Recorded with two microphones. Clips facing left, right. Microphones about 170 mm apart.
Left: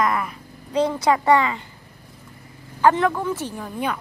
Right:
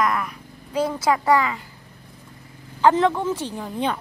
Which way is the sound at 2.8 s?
20° right (ahead or behind).